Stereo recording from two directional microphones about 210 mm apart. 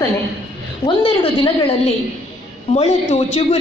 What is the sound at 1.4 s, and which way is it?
A woman's voice, 25° left (ahead or behind).